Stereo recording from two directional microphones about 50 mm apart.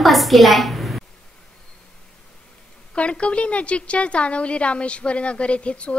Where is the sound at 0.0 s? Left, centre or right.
Centre.